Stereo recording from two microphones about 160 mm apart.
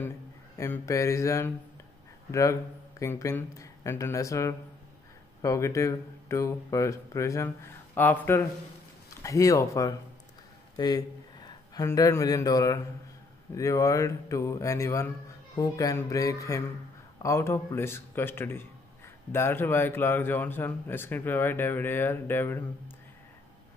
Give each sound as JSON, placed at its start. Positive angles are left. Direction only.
{"t": 0.6, "sound": "speech", "side_deg": 20}
{"t": 3.0, "sound": "speech", "side_deg": 20}